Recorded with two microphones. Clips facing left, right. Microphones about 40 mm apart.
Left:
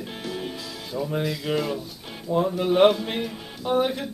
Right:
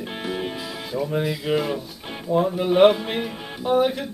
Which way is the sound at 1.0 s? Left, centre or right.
Centre.